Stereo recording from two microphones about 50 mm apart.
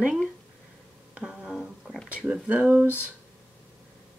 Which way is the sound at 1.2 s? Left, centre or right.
Centre.